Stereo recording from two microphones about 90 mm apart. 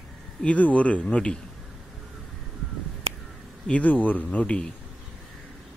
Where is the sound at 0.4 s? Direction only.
15° left (ahead or behind).